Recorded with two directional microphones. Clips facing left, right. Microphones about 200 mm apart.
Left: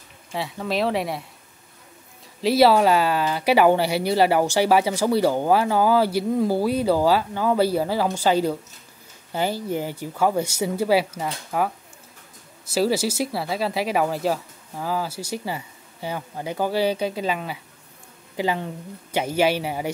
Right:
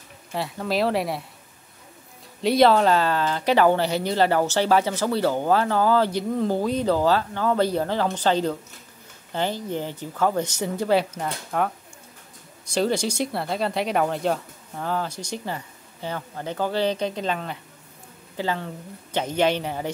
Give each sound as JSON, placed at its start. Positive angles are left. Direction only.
{"t": 0.3, "sound": "speech", "side_deg": 0}
{"t": 2.4, "sound": "speech", "side_deg": 5}